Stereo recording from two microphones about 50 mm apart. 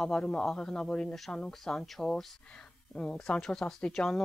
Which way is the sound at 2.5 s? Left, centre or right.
Left.